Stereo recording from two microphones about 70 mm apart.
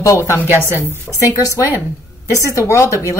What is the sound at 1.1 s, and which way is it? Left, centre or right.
Speech, left.